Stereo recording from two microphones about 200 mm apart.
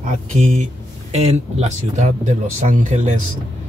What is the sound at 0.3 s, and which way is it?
Speech, 40° right (ahead or behind).